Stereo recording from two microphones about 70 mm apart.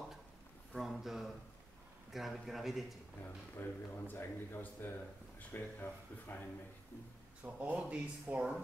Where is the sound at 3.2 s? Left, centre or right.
Left.